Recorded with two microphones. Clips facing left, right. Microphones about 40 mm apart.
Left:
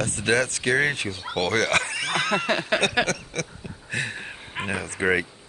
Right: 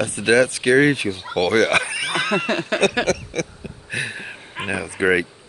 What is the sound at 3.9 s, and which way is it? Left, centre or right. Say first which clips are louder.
Speech: right 2 dB; centre.